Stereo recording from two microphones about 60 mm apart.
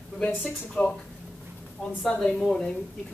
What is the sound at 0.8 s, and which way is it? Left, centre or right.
Speech, left.